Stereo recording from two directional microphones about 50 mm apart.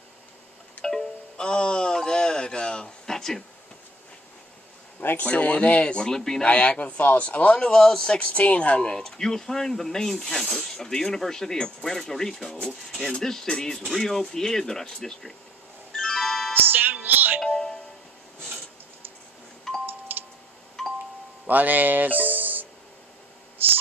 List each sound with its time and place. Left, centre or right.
0.8 s music: centre
5.1 s speech: left; by 6.4 s centre
6.4 s speech: left
7.6 s speech: centre
9.0 s speech: centre
16.0 s music: centre
16.5 s music: right
17.5 s music: centre
19.9 s music: right
20.8 s chime: centre
21.5 s music: right